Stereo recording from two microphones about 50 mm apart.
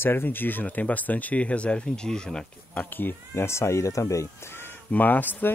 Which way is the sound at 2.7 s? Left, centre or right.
Left.